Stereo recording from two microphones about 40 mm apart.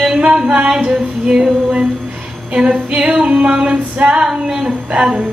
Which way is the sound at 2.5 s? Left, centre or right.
Right.